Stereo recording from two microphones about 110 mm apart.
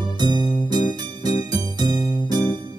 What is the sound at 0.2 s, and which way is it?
Music, 40° right (ahead or behind).